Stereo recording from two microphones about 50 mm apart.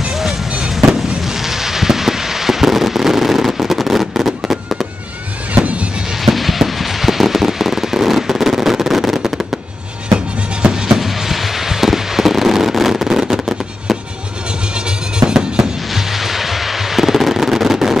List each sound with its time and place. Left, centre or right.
0.0 s fireworks: centre
5.5 s music: right
6.2 s firecracker: centre
10.0 s music: centre
15.1 s fireworks: centre